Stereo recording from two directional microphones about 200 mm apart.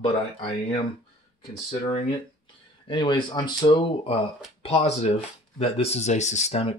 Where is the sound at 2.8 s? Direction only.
25° left (ahead or behind).